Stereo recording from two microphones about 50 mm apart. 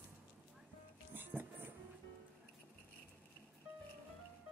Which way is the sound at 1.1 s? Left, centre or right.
Right.